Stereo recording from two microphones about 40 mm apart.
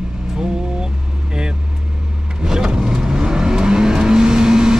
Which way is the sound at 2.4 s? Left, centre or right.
Centre.